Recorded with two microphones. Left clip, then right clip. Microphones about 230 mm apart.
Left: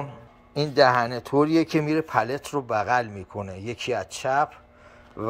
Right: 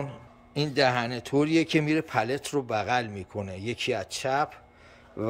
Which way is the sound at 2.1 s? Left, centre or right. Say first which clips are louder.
Left 3 dB; centre.